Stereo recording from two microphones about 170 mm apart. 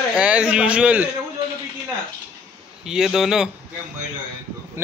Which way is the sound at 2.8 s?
5° right (ahead or behind).